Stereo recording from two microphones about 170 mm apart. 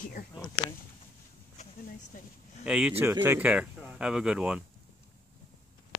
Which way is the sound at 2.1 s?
50° left (ahead or behind).